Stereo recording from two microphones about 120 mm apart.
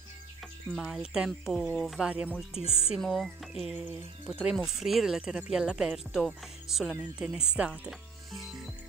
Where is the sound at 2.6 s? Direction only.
55° left (ahead or behind).